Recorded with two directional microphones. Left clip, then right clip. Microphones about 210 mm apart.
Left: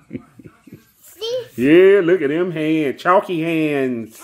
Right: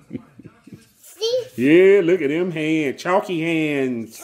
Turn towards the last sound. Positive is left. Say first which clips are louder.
# left 2 dB
turn(degrees=5)  # may be behind; listen again after turning